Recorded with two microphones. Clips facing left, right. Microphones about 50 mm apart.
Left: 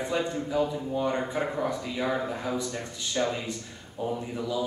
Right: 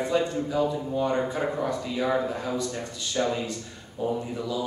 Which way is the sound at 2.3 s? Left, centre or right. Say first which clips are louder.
Right 1 dB; centre.